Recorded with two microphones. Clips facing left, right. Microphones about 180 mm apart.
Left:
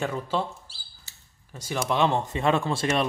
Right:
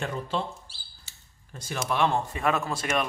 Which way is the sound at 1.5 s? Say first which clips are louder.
Left 3 dB; 10° left (ahead or behind).